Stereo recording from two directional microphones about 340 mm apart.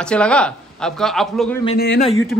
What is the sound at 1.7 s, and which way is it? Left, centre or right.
Speech, left.